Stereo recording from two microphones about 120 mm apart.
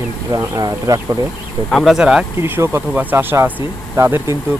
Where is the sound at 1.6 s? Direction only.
5° left (ahead or behind).